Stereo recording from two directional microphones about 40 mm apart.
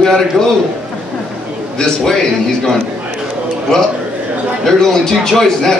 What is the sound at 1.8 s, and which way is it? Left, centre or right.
Speech, centre.